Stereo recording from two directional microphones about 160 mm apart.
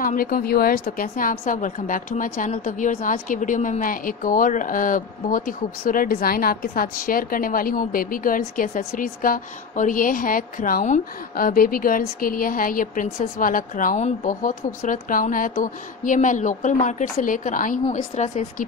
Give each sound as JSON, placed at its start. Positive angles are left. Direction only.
{"t": 0.0, "sound": "a woman's voice", "side_deg": 60}
{"t": 18.1, "sound": "speech", "side_deg": 45}